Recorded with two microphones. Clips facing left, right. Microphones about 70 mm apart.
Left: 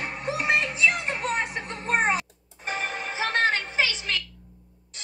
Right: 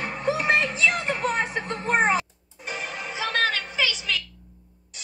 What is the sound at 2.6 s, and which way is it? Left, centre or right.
Music, left.